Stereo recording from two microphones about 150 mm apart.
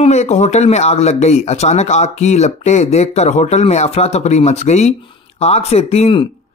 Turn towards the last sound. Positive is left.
turn(degrees=40)  # may be behind; listen again after turning